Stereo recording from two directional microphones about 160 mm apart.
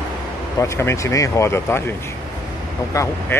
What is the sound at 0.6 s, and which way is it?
Speech, 15° left (ahead or behind).